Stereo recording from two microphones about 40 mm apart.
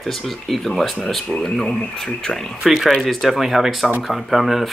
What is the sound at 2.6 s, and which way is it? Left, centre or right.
Speech, centre.